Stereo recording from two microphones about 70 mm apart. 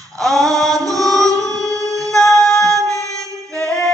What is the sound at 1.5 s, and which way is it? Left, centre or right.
Music, right.